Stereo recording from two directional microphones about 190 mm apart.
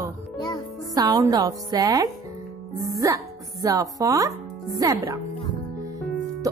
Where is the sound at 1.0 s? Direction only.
20° right (ahead or behind).